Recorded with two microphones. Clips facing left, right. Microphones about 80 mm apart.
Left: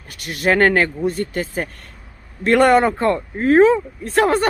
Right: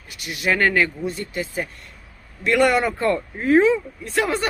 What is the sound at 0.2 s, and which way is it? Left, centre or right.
Speech, left.